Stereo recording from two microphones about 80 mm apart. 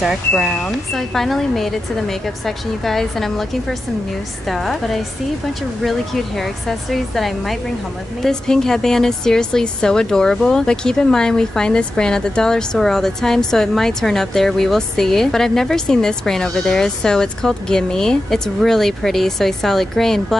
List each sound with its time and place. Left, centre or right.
0.4 s speech: centre